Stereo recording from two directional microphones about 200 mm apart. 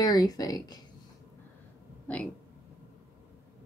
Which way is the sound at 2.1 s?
5° left (ahead or behind).